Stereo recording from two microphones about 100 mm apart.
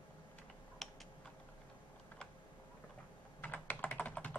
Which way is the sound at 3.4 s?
15° left (ahead or behind).